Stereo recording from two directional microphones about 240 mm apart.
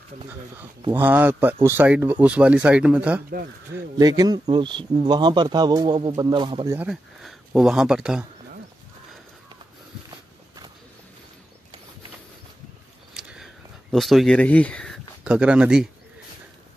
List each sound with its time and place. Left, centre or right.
0.9 s speech: centre
3.7 s speech: centre
13.1 s a sound: centre
13.9 s speech: centre